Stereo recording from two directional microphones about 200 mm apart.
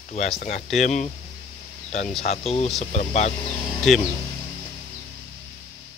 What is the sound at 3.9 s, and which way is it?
Speech, centre (ahead or behind).